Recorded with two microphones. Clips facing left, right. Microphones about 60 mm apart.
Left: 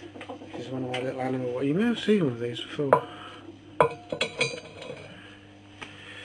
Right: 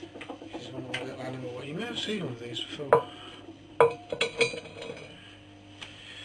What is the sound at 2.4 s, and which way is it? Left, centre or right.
Speech, centre.